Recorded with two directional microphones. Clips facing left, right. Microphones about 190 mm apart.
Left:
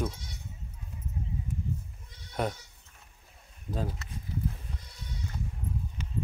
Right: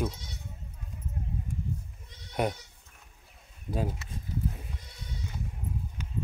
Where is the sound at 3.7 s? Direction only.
10° right (ahead or behind).